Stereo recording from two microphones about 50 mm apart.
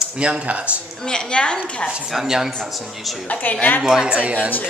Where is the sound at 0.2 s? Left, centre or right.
Right.